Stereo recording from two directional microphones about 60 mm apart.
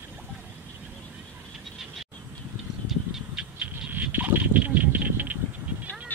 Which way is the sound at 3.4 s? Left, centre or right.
Right.